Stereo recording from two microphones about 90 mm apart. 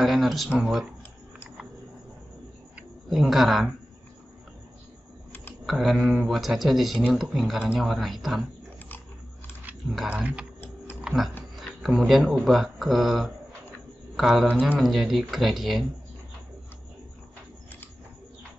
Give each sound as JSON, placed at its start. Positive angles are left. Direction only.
{"t": 0.0, "sound": "speech", "side_deg": 0}
{"t": 3.1, "sound": "speech", "side_deg": 0}
{"t": 5.7, "sound": "speech", "side_deg": 0}
{"t": 10.0, "sound": "speech", "side_deg": -15}
{"t": 11.5, "sound": "a sound", "side_deg": 0}
{"t": 12.1, "sound": "speech", "side_deg": 0}
{"t": 14.5, "sound": "speech", "side_deg": -15}
{"t": 14.8, "sound": "speech", "side_deg": 0}